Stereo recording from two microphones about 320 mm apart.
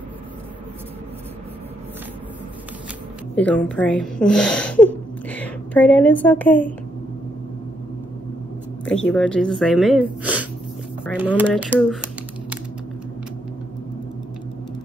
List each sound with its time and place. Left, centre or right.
3.3 s a woman's voice: centre
8.8 s speech: centre